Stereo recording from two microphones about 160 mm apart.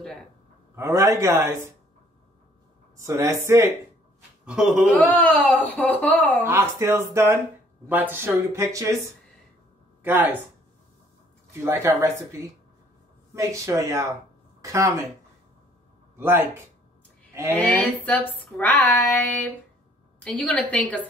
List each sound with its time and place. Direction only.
0.7 s speech: 15° right (ahead or behind)
3.0 s speech: 20° right (ahead or behind)
4.5 s speech: 5° right (ahead or behind)
4.9 s speech: 10° left (ahead or behind)
6.4 s speech: 15° right (ahead or behind)
11.6 s speech: 15° right (ahead or behind)
16.2 s speech: 15° right (ahead or behind)
17.3 s a sound: 15° right (ahead or behind)
17.6 s speech: 10° left (ahead or behind)